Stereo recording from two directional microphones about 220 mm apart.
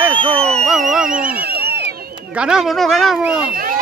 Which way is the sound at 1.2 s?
40° right (ahead or behind).